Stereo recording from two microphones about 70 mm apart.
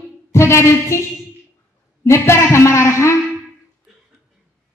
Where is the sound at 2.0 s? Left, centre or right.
Left.